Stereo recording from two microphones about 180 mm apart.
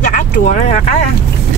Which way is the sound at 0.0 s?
40° left (ahead or behind).